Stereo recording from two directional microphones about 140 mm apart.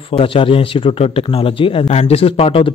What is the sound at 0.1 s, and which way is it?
Speech, 40° left (ahead or behind).